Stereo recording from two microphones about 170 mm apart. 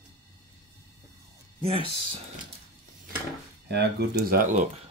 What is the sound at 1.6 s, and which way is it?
Speech, 35° right (ahead or behind).